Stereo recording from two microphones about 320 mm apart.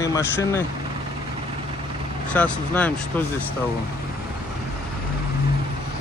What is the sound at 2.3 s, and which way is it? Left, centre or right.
Speech, centre.